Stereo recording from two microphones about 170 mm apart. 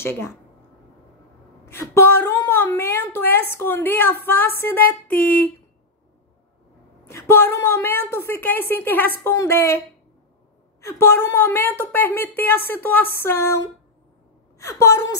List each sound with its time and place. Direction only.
0.0 s a woman's voice: 15° left (ahead or behind)
1.7 s a woman's voice: 15° left (ahead or behind)
7.1 s a woman's voice: 15° left (ahead or behind)
10.9 s a woman's voice: 15° left (ahead or behind)